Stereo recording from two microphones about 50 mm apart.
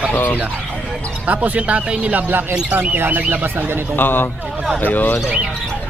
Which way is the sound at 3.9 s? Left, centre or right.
Left.